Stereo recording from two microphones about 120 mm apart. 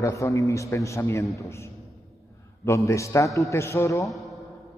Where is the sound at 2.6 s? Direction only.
25° left (ahead or behind).